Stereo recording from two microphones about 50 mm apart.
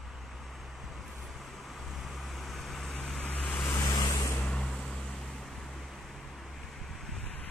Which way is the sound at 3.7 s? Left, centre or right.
Left.